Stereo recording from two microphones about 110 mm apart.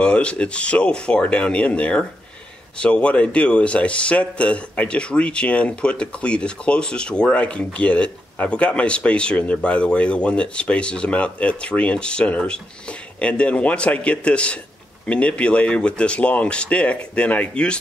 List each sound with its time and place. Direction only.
0.0 s speech: 10° left (ahead or behind)